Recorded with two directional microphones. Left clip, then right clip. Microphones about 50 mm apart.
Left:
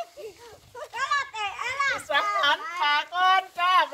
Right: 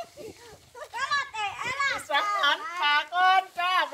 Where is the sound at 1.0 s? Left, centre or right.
Left.